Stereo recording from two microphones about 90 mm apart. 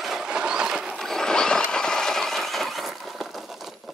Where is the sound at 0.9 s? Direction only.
5° left (ahead or behind).